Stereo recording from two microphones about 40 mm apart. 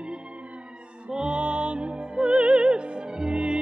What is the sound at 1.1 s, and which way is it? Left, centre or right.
Music, right.